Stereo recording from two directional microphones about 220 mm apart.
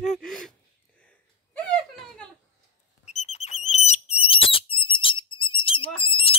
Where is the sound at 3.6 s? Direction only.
30° left (ahead or behind).